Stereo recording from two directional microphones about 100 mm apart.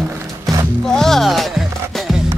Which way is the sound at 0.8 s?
5° left (ahead or behind).